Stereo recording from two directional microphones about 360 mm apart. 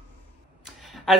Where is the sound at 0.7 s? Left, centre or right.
Centre.